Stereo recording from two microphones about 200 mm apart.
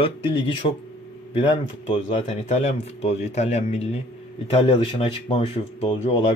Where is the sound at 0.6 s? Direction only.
30° left (ahead or behind).